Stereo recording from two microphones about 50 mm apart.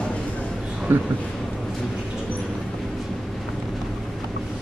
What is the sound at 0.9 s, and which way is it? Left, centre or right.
Speech, right.